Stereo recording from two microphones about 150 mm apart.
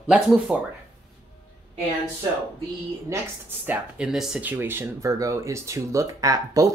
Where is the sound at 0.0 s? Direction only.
5° right (ahead or behind).